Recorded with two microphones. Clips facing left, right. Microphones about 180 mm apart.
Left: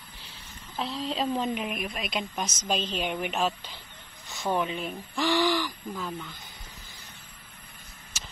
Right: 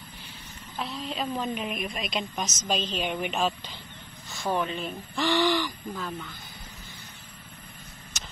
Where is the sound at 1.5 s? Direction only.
5° left (ahead or behind).